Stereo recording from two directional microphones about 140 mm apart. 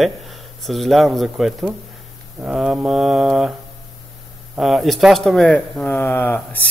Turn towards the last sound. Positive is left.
turn(degrees=15)  # may be behind; listen again after turning